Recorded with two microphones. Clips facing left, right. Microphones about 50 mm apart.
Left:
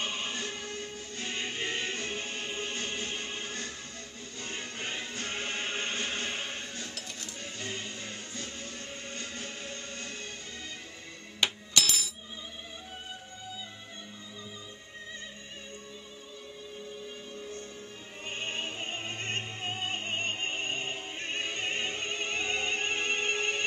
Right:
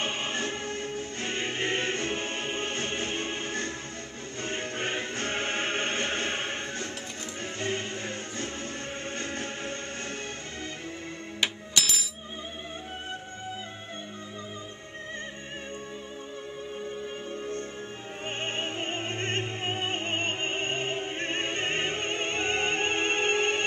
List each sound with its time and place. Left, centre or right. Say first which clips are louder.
0.0 s music: right 4 dB; right
11.4 s music: even; centre
17.3 s music: right 7 dB; right